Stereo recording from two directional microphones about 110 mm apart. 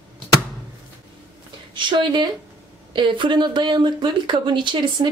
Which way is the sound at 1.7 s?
45° right (ahead or behind).